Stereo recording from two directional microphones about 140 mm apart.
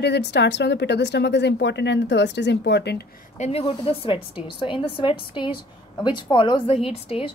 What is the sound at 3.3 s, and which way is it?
A woman's voice, 50° left (ahead or behind).